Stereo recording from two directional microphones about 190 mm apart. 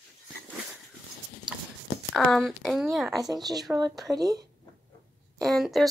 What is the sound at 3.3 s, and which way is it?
Speech, 20° right (ahead or behind).